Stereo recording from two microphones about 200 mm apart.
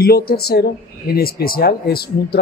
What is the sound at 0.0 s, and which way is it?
Speech, 50° left (ahead or behind).